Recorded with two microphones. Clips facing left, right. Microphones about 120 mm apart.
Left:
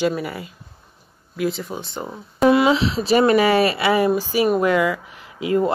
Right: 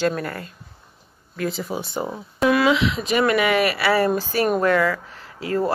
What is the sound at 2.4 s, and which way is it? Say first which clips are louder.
Speech: left 2 dB; 25° left (ahead or behind).